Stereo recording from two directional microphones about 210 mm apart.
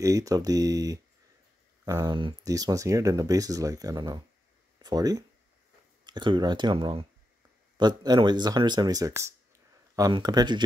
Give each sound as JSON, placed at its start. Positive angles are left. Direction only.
{"t": 0.0, "sound": "speech", "side_deg": -15}